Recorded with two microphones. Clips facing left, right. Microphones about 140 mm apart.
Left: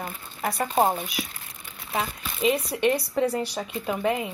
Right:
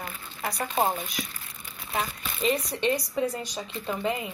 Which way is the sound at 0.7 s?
25° left (ahead or behind).